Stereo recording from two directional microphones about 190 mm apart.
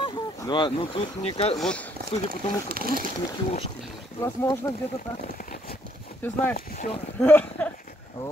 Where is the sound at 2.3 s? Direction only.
50° right (ahead or behind).